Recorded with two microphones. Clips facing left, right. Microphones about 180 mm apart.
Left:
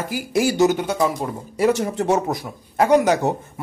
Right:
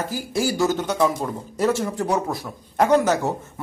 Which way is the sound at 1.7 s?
20° left (ahead or behind).